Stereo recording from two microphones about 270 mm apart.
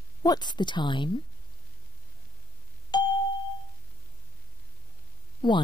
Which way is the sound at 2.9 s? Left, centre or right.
Centre.